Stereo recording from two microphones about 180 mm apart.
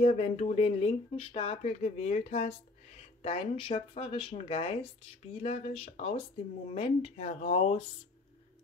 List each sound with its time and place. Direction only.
0.0 s speech: 40° left (ahead or behind)